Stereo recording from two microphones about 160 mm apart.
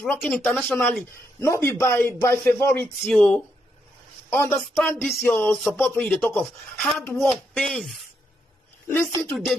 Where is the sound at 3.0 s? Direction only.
5° left (ahead or behind).